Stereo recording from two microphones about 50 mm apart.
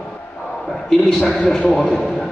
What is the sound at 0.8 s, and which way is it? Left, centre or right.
A man's voice, centre.